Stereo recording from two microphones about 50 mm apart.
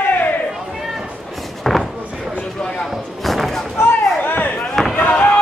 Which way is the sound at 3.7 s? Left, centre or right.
Left.